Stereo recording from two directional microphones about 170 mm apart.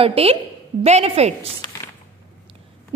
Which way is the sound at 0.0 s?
35° right (ahead or behind).